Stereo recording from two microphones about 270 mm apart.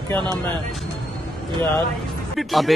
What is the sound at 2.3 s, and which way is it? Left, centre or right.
Speech, centre.